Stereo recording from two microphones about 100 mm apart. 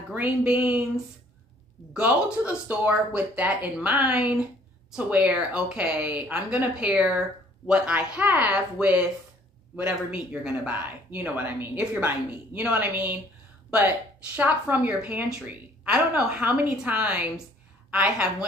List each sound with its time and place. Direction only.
0.1 s speech: 15° right (ahead or behind)
2.2 s speech: 15° right (ahead or behind)